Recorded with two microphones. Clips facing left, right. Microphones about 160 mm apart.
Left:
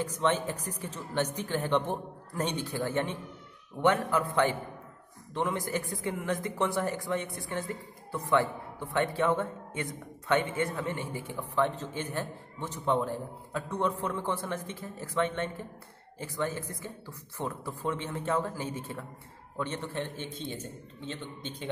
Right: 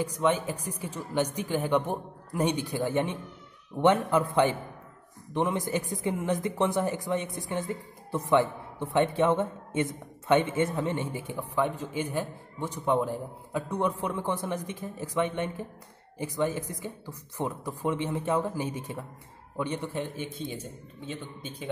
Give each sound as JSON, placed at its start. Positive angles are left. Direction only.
{"t": 0.0, "sound": "a man's voice", "side_deg": -10}